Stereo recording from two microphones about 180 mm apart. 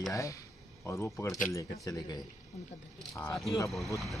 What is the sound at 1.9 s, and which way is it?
Speech, 20° left (ahead or behind).